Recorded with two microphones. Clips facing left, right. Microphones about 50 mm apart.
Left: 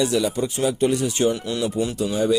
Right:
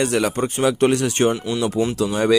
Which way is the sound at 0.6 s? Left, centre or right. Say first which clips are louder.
Right 4 dB; right.